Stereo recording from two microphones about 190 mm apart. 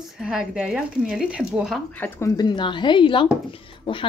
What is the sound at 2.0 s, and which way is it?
A woman's voice, 15° left (ahead or behind).